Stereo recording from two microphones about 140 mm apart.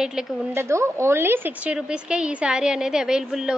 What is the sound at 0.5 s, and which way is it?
A woman's voice, 20° right (ahead or behind).